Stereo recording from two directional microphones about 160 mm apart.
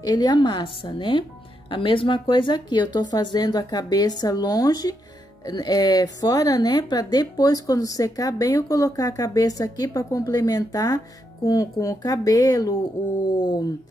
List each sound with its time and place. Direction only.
0.0 s speech: 25° left (ahead or behind)